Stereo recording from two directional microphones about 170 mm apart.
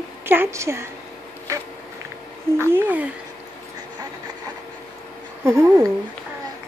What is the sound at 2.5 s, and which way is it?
Speech, 15° right (ahead or behind).